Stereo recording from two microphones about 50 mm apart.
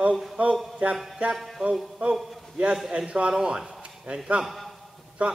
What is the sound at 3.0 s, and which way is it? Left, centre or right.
A man's voice, centre.